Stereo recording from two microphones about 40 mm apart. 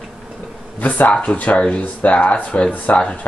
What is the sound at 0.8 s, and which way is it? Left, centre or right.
Speech, left.